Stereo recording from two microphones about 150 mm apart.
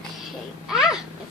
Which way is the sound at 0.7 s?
5° right (ahead or behind).